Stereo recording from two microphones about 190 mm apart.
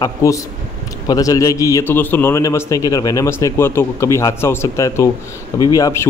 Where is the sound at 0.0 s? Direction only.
15° left (ahead or behind).